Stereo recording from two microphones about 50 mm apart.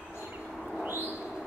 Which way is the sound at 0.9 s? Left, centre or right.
Right.